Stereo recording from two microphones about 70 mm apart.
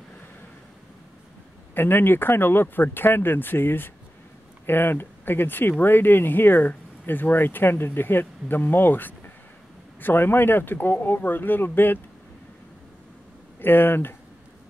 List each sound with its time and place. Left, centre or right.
1.8 s speech: left
13.6 s speech: left